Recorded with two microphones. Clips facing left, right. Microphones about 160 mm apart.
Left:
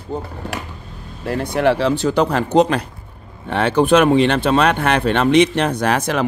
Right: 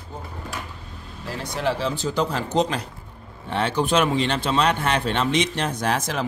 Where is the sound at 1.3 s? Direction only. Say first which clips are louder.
Left 9 dB; 55° left (ahead or behind).